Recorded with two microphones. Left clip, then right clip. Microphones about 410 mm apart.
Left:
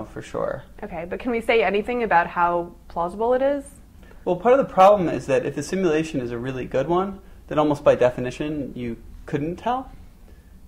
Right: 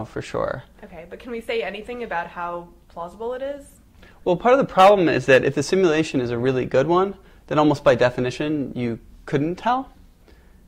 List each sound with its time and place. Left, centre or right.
0.1 s speech: right
0.7 s a woman's voice: left
4.2 s speech: right